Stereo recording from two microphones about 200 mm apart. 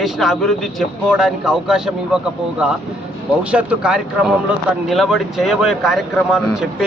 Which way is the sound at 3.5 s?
5° right (ahead or behind).